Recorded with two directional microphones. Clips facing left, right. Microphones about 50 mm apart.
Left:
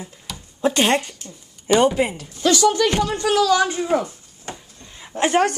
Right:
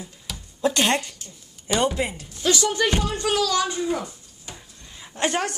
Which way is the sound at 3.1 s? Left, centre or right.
Centre.